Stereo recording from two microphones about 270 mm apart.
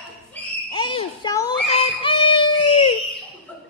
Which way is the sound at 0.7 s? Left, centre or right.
Centre.